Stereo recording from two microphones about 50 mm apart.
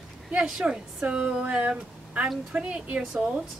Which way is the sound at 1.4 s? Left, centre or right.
Right.